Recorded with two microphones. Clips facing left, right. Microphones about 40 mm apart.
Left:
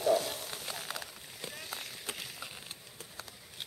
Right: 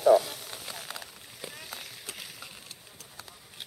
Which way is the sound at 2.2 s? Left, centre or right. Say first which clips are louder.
Even; centre.